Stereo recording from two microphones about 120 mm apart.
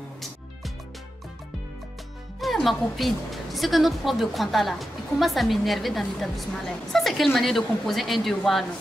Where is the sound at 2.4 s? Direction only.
Centre (ahead or behind).